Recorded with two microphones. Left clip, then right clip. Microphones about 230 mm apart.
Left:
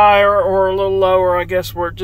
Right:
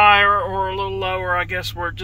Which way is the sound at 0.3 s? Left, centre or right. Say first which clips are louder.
Left 6 dB; left.